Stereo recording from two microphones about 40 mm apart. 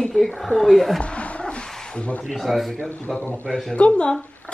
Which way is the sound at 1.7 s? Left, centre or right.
Centre.